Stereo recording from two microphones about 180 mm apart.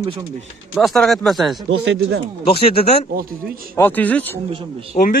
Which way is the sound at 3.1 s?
55° right (ahead or behind).